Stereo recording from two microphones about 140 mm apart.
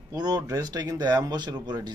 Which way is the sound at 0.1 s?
30° right (ahead or behind).